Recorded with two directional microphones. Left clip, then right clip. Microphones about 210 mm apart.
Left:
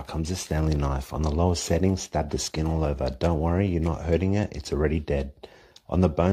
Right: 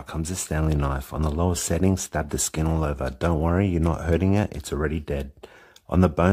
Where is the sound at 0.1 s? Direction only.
15° right (ahead or behind).